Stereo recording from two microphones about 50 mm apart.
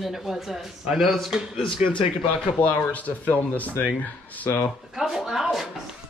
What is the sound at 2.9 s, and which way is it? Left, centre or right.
Speech, left.